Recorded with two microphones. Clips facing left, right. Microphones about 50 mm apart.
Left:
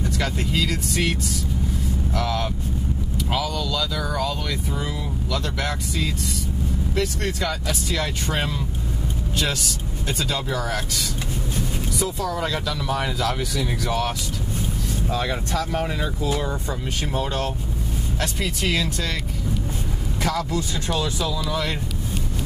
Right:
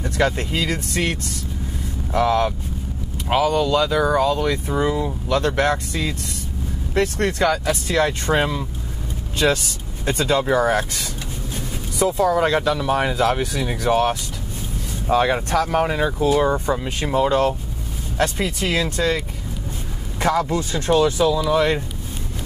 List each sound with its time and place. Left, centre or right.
0.2 s speech: right
2.1 s speech: right
4.6 s speech: right
7.2 s speech: right
7.9 s speech: right
12.2 s speech: right
20.2 s speech: right